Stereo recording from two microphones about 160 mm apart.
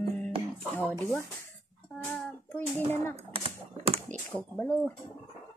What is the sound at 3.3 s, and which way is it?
Typewriter, 35° right (ahead or behind).